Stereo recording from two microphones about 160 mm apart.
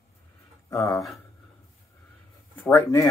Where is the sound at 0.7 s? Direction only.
20° left (ahead or behind).